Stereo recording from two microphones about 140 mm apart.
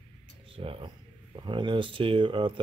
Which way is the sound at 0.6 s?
40° right (ahead or behind).